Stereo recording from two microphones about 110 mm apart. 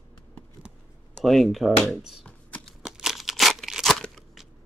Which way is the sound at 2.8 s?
5° right (ahead or behind).